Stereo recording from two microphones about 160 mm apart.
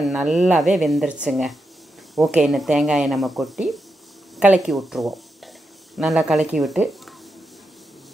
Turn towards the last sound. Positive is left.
turn(degrees=0)  # may be behind; listen again after turning